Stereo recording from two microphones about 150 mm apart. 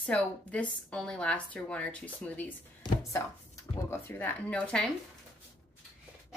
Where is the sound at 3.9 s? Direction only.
15° left (ahead or behind).